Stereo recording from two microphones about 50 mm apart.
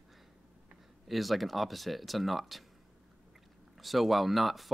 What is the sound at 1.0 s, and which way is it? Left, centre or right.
Speech, centre.